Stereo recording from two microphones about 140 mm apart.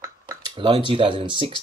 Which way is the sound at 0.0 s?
25° right (ahead or behind).